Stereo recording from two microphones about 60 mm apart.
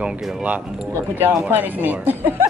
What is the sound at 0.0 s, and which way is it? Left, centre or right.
Speech, right.